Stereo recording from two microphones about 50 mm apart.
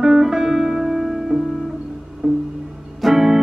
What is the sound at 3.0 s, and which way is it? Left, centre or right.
Music, centre.